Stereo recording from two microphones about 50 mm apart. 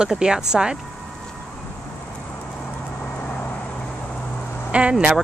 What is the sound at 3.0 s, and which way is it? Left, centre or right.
Vehicle, left.